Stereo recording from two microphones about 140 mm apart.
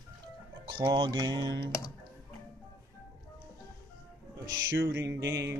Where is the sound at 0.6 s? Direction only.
35° right (ahead or behind).